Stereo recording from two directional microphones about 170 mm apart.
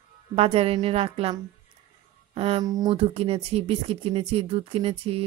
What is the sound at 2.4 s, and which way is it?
Speech, 30° right (ahead or behind).